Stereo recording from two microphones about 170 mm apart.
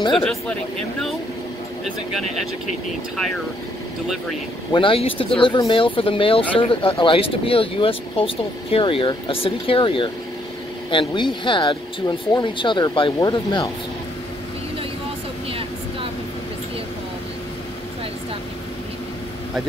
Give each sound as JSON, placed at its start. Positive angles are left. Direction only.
{"t": 0.1, "sound": "speech", "side_deg": 0}
{"t": 4.7, "sound": "speech", "side_deg": 30}